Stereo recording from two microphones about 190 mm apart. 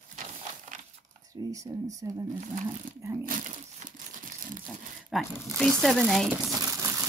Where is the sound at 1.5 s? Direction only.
15° right (ahead or behind).